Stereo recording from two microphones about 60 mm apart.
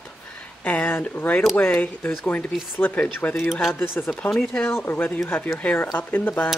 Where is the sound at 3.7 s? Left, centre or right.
Left.